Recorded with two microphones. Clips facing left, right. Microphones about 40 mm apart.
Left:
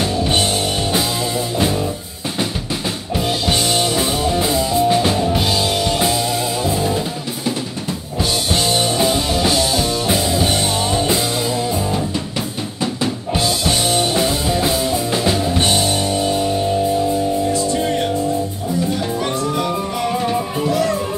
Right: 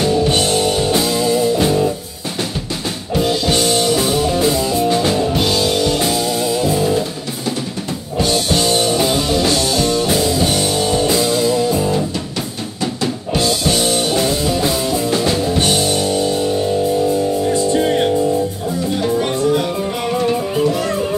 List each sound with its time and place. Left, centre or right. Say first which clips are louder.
0.0 s music: right 4 dB; centre
0.3 s music: right 3 dB; centre
1.4 s music: right 5 dB; centre
3.7 s music: right 3 dB; centre
13.0 s music: right 2 dB; centre
17.5 s music: right 3 dB; right
20.1 s music: right 4 dB; centre